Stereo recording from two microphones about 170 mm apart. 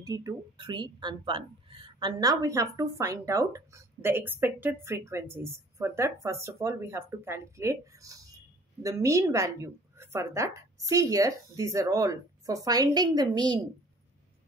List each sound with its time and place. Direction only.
0.0 s a woman's voice: 20° right (ahead or behind)